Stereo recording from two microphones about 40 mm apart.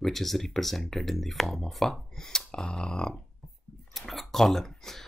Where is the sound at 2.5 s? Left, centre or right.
Left.